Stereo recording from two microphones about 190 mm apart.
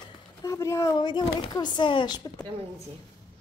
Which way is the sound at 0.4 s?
15° left (ahead or behind).